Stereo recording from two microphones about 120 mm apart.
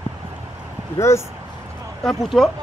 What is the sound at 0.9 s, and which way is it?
Speech, 25° left (ahead or behind).